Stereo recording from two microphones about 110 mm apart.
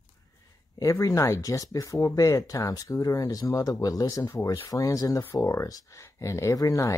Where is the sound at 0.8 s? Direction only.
30° left (ahead or behind).